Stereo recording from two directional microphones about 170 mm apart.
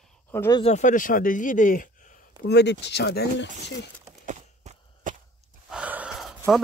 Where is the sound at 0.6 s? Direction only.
45° left (ahead or behind).